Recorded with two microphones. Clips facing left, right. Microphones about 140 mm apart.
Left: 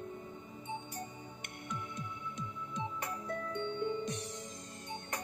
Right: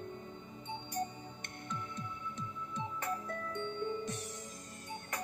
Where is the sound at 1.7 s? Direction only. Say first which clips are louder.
Even; 15° left (ahead or behind).